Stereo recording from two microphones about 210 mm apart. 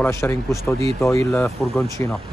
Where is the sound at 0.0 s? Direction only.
15° left (ahead or behind).